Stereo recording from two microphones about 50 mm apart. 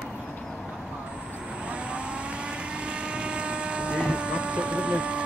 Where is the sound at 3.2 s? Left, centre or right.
Right.